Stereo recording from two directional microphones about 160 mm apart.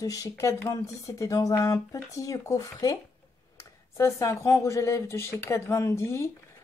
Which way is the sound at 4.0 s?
20° left (ahead or behind).